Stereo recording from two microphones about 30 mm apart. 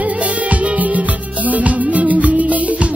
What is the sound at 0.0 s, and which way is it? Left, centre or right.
Music, right.